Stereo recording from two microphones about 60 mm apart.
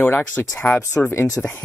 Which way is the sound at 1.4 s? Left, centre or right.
Centre.